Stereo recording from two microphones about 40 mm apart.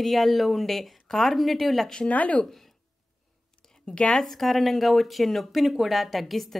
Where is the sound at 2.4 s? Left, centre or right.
Centre.